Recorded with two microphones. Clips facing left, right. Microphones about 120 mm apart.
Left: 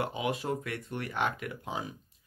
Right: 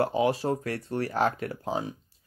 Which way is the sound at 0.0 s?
35° right (ahead or behind).